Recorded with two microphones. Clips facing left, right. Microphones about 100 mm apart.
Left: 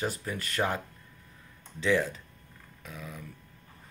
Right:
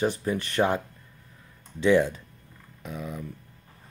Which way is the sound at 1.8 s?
20° right (ahead or behind).